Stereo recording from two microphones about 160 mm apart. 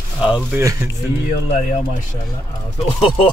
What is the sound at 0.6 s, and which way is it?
Speech, 20° right (ahead or behind).